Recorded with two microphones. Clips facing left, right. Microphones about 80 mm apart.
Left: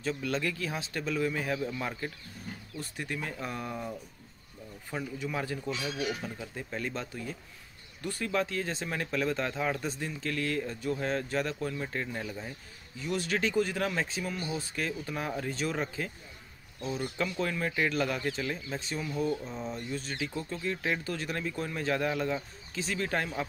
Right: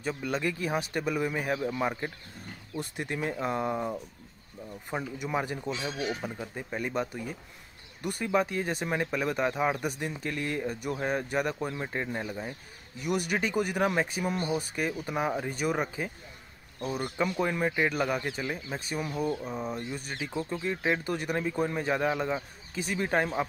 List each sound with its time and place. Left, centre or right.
0.0 s speech: centre
4.9 s speech: right
6.4 s speech: centre
17.2 s speech: centre